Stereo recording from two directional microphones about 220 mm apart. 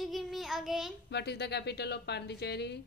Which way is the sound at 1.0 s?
50° left (ahead or behind).